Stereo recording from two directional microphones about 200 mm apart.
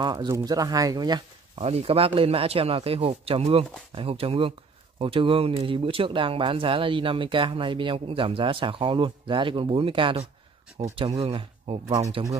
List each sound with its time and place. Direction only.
0.0 s speech: 20° right (ahead or behind)